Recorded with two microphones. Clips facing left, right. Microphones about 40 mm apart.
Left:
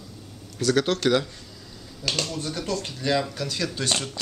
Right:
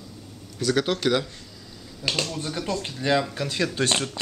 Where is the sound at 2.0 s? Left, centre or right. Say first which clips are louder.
Right 1 dB; centre.